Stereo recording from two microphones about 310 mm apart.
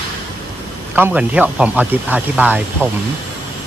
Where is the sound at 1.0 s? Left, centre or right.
Centre.